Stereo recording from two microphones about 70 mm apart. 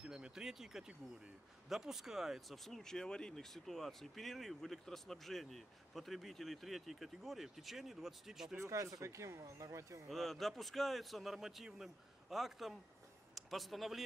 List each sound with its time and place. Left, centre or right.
0.0 s speech: centre
8.5 s speech: right
10.0 s speech: centre